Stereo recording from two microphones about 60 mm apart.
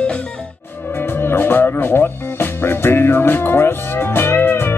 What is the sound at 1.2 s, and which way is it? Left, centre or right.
Music, left.